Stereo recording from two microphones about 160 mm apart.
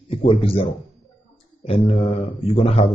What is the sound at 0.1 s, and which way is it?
Speech, 35° left (ahead or behind).